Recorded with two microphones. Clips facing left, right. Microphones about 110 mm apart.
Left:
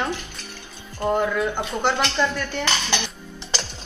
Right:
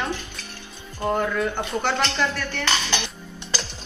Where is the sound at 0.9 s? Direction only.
10° left (ahead or behind).